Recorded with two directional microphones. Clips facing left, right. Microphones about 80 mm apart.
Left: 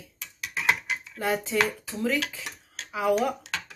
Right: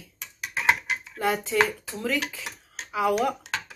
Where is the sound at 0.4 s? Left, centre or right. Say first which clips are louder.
Right 2 dB; right.